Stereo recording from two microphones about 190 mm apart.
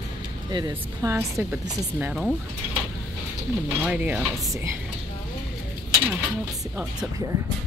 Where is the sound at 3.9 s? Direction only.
5° right (ahead or behind).